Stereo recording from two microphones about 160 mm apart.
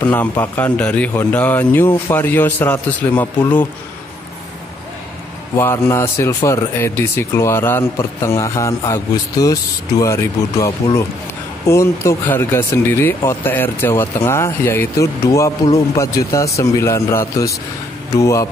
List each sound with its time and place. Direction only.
0.0 s speech: 10° left (ahead or behind)
5.6 s a man's voice: 15° left (ahead or behind)